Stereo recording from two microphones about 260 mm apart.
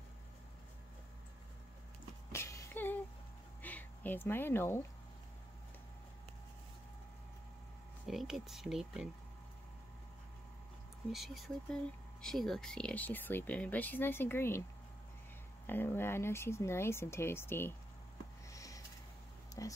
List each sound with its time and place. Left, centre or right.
2.3 s a sound: centre
8.1 s speech: centre
11.1 s speech: centre
15.6 s speech: centre
18.5 s a sound: centre
19.6 s speech: centre